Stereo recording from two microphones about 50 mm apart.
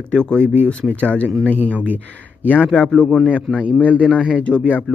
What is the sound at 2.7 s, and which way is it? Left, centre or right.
Speech, centre.